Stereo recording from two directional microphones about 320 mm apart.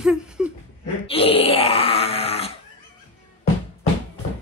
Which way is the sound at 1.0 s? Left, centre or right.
Centre.